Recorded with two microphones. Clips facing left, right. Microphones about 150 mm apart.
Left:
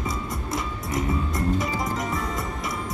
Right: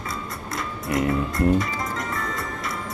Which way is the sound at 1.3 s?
20° left (ahead or behind).